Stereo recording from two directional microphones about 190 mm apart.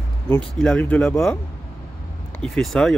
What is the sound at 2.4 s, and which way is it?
Speech, 5° left (ahead or behind).